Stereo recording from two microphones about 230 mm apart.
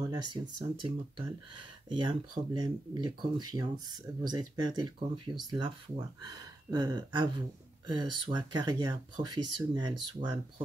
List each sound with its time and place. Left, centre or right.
0.0 s speech: centre
1.9 s speech: right